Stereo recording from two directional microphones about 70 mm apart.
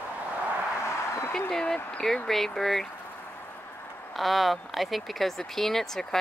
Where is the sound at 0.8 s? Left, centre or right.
Left.